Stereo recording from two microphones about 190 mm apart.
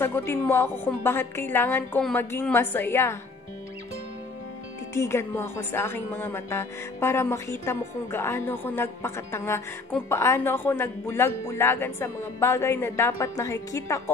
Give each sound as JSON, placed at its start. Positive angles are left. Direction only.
{"t": 0.0, "sound": "a woman's voice", "side_deg": 10}
{"t": 4.9, "sound": "a woman's voice", "side_deg": 15}